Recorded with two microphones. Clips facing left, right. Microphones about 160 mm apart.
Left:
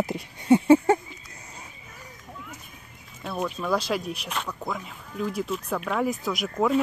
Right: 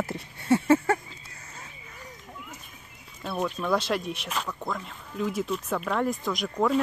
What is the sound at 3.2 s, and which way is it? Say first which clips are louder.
Speech: even; centre (ahead or behind).